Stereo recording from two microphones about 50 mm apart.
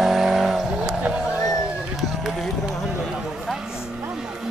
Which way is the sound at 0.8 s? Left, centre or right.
Right.